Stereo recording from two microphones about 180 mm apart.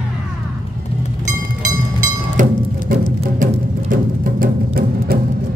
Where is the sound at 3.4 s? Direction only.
50° right (ahead or behind).